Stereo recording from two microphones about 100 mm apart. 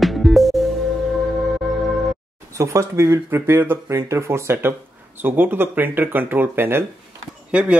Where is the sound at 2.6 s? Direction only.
30° right (ahead or behind).